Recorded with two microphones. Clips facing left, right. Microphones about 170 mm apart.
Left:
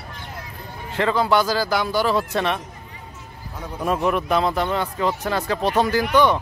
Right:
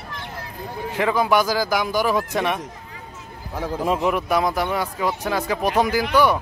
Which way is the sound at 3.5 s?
90° right.